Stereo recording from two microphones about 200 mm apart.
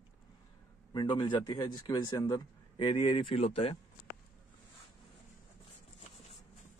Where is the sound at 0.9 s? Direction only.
20° left (ahead or behind).